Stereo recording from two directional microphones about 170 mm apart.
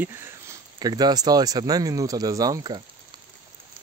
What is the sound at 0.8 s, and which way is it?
Speech, 25° right (ahead or behind).